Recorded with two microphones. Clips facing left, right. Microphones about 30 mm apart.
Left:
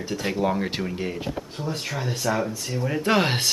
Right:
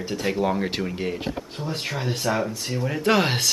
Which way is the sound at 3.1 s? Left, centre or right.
Centre.